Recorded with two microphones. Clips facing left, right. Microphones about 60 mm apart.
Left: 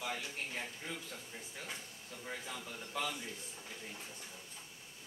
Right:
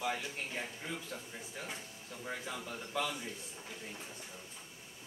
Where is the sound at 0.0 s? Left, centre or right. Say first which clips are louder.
Right 3 dB; centre.